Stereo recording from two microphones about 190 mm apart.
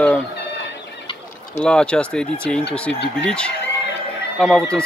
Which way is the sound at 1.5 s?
5° left (ahead or behind).